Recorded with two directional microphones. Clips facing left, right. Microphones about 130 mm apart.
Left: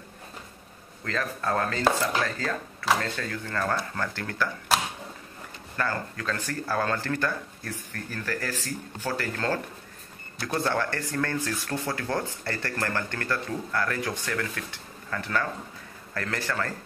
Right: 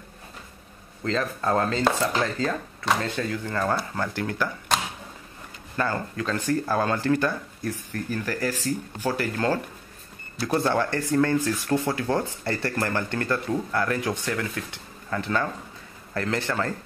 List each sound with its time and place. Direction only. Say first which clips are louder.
1.0 s speech: right 4 dB; 25° right (ahead or behind)
3.0 s speech: right 4 dB; 20° right (ahead or behind)
4.7 s a sound: left 1 dB; 5° left (ahead or behind)
5.8 s speech: right 3 dB; 20° right (ahead or behind)